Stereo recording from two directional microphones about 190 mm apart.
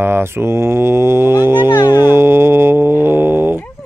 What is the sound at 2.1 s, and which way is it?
Music, 10° right (ahead or behind).